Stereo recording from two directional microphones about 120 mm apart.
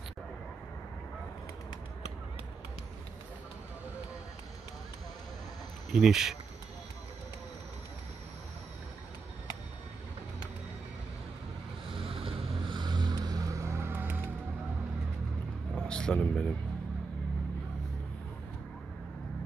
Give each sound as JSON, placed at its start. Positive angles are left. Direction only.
{"t": 5.9, "sound": "speech", "side_deg": -5}
{"t": 11.9, "sound": "boat", "side_deg": -50}
{"t": 15.7, "sound": "a sound", "side_deg": 5}